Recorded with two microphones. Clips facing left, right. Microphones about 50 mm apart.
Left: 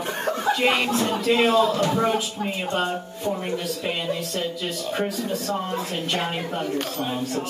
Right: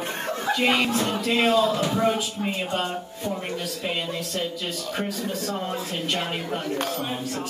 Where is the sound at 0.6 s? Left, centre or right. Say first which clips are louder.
Right 3 dB; centre.